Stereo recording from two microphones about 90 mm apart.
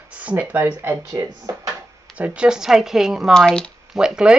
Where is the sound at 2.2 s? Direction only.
10° right (ahead or behind).